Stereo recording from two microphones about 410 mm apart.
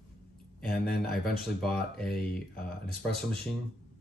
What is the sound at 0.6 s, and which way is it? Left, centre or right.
Speech, centre.